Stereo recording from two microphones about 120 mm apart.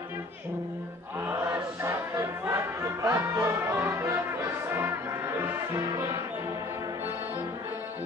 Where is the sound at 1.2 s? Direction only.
20° right (ahead or behind).